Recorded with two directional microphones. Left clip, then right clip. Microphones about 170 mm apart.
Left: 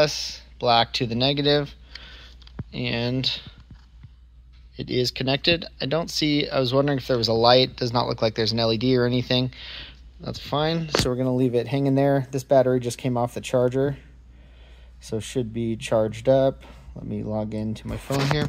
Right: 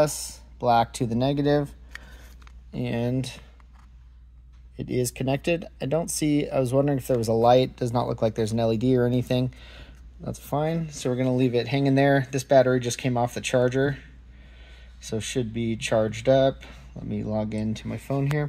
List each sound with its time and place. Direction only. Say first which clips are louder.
0.0 s speech: left 2 dB; 15° right (ahead or behind)
5.0 s speech: left 5 dB; 5° right (ahead or behind)